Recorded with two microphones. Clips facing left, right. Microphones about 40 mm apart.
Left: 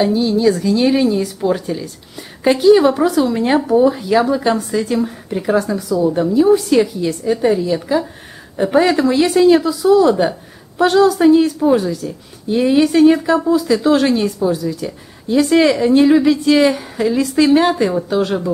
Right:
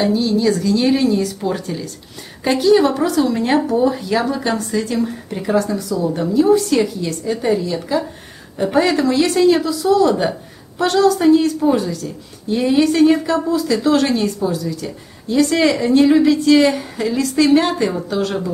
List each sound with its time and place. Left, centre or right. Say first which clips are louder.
0.0 s a woman's voice: left 2 dB; centre